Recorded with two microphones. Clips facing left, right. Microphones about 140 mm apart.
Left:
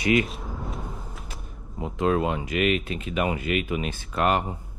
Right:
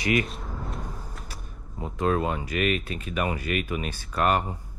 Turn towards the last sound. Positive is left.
turn(degrees=20)  # may be behind; listen again after turning